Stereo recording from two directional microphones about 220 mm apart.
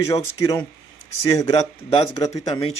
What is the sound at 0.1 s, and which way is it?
Speech, 15° left (ahead or behind).